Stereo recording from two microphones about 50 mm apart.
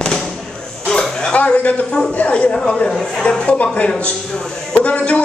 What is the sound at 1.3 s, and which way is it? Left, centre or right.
A man's voice, left.